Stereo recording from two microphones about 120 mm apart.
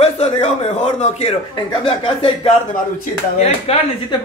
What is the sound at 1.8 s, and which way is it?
Speech, 45° left (ahead or behind).